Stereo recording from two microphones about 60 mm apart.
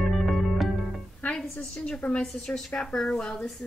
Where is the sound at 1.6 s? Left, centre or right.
Centre.